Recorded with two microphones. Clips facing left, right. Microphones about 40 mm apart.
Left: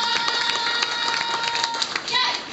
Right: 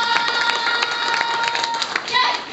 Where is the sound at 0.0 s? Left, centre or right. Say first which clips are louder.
Right 5 dB; centre.